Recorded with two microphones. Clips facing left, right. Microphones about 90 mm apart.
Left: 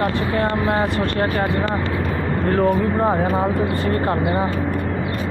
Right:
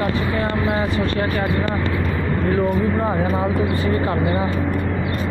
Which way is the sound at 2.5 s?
60° left (ahead or behind).